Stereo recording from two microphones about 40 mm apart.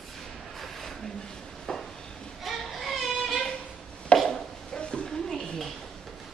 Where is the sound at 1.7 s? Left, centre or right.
Centre.